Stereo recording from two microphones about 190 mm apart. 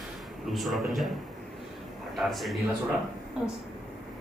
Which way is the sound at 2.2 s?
Centre (ahead or behind).